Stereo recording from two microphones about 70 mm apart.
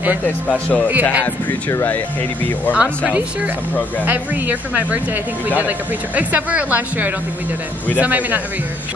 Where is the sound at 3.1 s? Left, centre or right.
Right.